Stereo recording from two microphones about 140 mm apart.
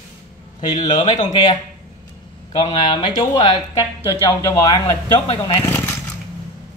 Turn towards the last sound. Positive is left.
turn(degrees=15)  # may be behind; listen again after turning